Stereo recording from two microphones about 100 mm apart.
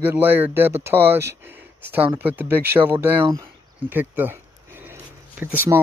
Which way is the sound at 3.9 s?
20° right (ahead or behind).